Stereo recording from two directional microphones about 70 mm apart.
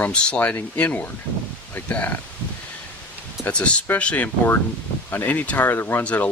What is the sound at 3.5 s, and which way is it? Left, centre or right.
Speech, centre.